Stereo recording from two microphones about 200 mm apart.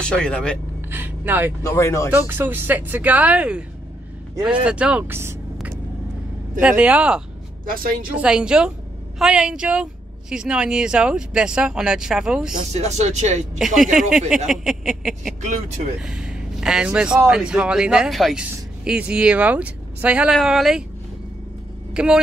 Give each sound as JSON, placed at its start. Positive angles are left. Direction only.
{"t": 0.0, "sound": "a man's voice", "side_deg": 5}
{"t": 0.8, "sound": "vehicle", "side_deg": -10}
{"t": 1.6, "sound": "speech", "side_deg": 15}
{"t": 2.2, "sound": "speech", "side_deg": -10}
{"t": 4.6, "sound": "speech", "side_deg": -5}
{"t": 7.6, "sound": "speech", "side_deg": -45}
{"t": 8.1, "sound": "a man's voice", "side_deg": -5}
{"t": 12.5, "sound": "speech", "side_deg": -35}
{"t": 13.9, "sound": "a man's voice", "side_deg": 0}
{"t": 21.9, "sound": "speech", "side_deg": -5}